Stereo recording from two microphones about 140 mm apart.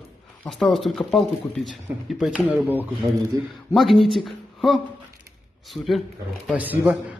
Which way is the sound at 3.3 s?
25° right (ahead or behind).